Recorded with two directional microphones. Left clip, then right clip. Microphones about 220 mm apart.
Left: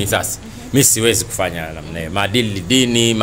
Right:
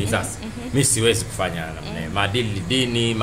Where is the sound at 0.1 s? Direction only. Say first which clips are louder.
Left 5 dB; 50° left (ahead or behind).